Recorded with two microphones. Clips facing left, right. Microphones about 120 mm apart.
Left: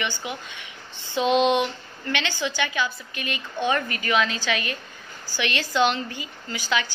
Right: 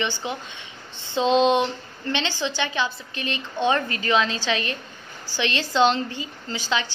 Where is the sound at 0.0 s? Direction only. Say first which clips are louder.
Right 3 dB; 25° right (ahead or behind).